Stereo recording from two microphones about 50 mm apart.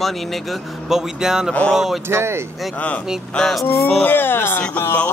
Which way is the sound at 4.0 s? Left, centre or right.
Left.